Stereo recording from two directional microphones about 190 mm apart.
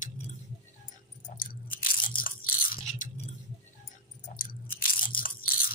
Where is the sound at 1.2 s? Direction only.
45° left (ahead or behind).